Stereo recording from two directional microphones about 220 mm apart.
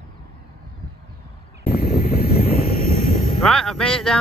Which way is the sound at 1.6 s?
40° left (ahead or behind).